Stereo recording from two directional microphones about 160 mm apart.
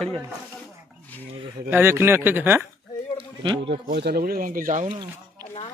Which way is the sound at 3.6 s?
75° right (ahead or behind).